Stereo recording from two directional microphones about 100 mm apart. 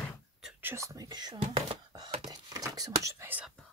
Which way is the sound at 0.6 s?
25° right (ahead or behind).